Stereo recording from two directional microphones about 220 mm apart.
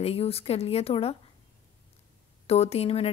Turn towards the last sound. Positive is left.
turn(degrees=25)  # may be behind; listen again after turning